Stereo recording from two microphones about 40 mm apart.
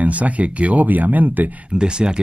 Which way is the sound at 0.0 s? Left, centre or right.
Right.